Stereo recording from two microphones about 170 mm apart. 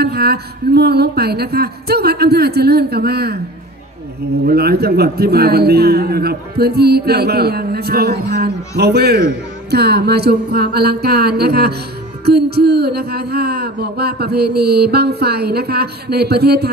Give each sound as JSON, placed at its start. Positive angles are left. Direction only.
{"t": 0.0, "sound": "a man's voice", "side_deg": -70}
{"t": 4.5, "sound": "a man's voice", "side_deg": -65}